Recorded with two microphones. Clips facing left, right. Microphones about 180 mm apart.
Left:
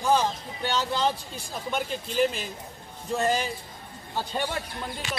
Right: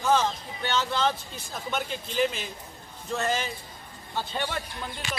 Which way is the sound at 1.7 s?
10° left (ahead or behind).